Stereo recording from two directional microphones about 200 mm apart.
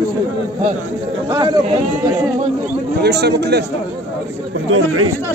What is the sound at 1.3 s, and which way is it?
Speech, 15° right (ahead or behind).